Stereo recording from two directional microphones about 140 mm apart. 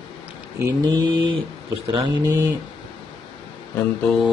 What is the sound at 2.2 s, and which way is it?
Speech, 20° right (ahead or behind).